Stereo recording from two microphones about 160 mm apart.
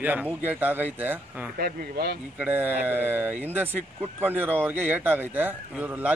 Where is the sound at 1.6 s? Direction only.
75° right (ahead or behind).